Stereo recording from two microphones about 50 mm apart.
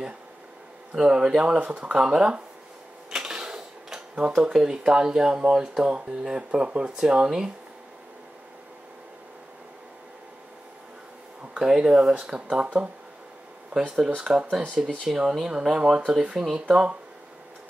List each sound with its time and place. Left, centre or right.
0.9 s speech: centre
2.0 s speech: centre
3.1 s a sound: centre
4.4 s speech: centre
11.5 s speech: centre
13.8 s speech: centre